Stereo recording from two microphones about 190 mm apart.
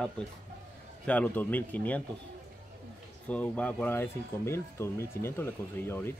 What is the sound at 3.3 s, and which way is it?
Speech, 5° left (ahead or behind).